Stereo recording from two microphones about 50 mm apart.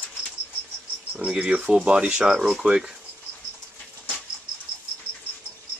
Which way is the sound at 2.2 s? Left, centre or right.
Centre.